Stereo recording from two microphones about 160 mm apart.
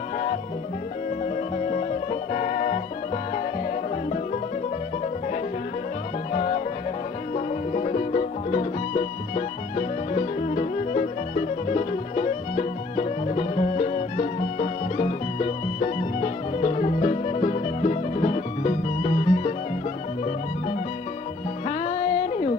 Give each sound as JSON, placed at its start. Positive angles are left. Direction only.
{"t": 1.2, "sound": "music", "side_deg": 45}
{"t": 7.3, "sound": "music", "side_deg": 45}
{"t": 21.6, "sound": "music", "side_deg": 45}